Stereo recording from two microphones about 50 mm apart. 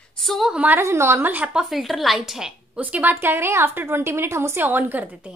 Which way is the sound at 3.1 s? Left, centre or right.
Right.